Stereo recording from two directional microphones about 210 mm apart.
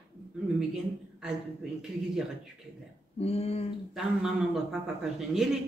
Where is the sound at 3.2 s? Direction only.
30° left (ahead or behind).